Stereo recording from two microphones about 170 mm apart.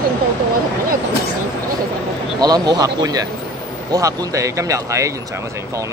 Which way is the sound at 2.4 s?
25° right (ahead or behind).